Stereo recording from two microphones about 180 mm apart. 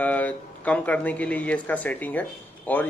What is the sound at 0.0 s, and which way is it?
Speech, 10° left (ahead or behind).